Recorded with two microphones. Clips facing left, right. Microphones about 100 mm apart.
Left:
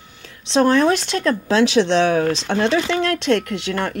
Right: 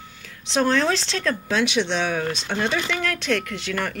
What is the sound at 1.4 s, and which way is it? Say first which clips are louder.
Speech: left 8 dB; 35° left (ahead or behind).